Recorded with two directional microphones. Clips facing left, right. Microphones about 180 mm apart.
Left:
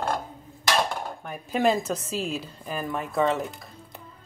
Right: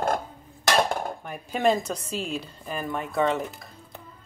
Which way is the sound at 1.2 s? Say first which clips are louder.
Even; centre (ahead or behind).